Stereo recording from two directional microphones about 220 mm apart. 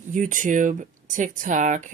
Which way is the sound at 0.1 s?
35° right (ahead or behind).